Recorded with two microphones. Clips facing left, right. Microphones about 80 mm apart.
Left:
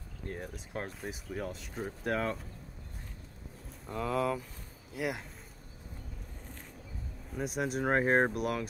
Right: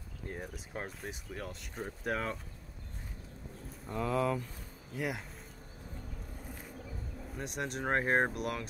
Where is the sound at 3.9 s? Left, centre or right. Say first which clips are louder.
Even; centre.